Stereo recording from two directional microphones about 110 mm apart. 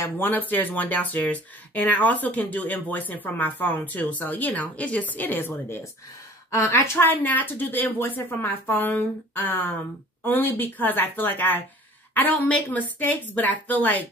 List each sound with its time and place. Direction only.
0.0 s speech: 15° left (ahead or behind)